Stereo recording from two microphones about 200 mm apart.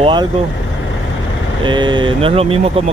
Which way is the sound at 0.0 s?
25° right (ahead or behind).